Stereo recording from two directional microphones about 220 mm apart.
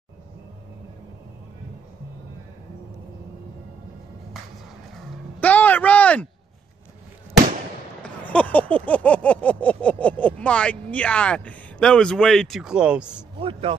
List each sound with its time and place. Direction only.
4.9 s dog: 5° left (ahead or behind)
8.2 s a sound: 5° left (ahead or behind)
13.4 s speech: 25° right (ahead or behind)